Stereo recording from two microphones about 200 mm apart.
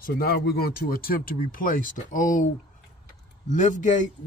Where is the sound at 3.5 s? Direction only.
40° left (ahead or behind).